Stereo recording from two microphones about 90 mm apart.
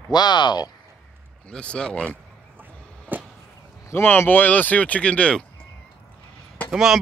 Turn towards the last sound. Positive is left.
turn(degrees=-5)  # may be behind; listen again after turning